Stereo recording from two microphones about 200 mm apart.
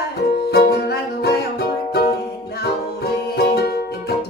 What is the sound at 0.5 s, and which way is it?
Music, 55° left (ahead or behind).